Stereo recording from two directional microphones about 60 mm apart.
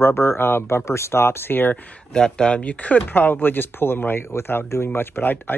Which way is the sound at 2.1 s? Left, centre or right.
Centre.